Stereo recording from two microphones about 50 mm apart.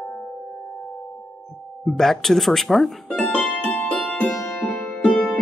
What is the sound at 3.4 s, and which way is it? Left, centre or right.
Music, left.